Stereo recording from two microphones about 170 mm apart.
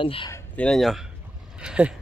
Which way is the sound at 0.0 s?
30° left (ahead or behind).